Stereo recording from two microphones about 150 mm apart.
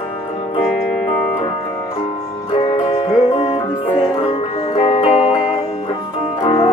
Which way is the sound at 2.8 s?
40° left (ahead or behind).